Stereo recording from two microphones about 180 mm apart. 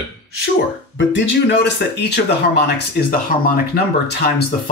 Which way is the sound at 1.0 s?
90° left.